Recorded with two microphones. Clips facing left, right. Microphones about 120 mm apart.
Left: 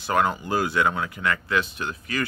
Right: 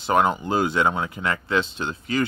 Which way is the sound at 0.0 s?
20° right (ahead or behind).